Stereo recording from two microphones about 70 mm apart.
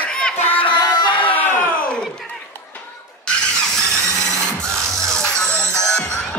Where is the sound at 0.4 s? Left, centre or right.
Left.